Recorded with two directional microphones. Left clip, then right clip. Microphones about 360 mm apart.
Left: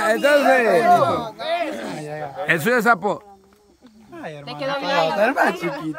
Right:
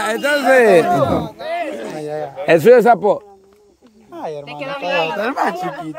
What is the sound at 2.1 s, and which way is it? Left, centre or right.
A man's voice, centre.